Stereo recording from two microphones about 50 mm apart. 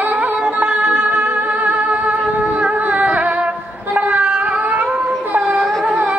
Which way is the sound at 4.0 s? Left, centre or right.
Right.